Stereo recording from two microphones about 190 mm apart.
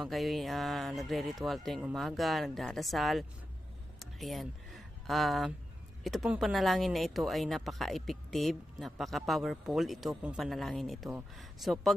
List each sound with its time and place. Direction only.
0.0 s speech: centre (ahead or behind)
4.0 s a sound: centre (ahead or behind)
6.0 s speech: centre (ahead or behind)